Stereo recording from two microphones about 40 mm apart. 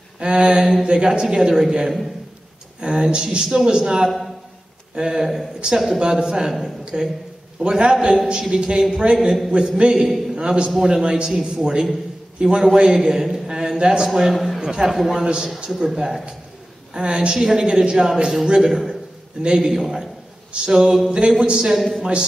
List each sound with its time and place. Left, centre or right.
0.2 s a woman's voice: centre
14.3 s a man's voice: centre
14.6 s a man's voice: centre
15.0 s a man's voice: centre
15.2 s a woman's voice: right